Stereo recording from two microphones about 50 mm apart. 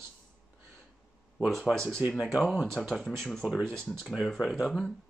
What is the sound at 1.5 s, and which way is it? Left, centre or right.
Speech, centre.